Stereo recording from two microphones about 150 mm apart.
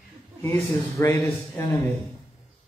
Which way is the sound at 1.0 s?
15° left (ahead or behind).